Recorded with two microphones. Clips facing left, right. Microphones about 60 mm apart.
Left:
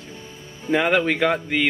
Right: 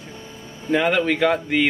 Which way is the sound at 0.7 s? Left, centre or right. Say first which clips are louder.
Even; centre.